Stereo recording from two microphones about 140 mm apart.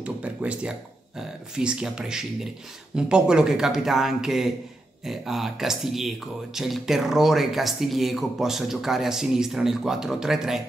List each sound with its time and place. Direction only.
0.0 s speech: 10° right (ahead or behind)